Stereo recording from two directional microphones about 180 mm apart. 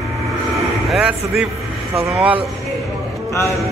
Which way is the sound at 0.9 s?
Centre (ahead or behind).